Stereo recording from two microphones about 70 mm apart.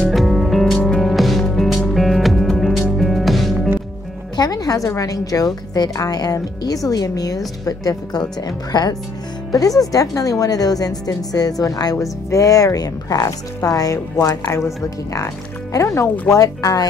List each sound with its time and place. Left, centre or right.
0.1 s music: centre
4.4 s a woman's voice: left
9.5 s a woman's voice: left
15.7 s a woman's voice: left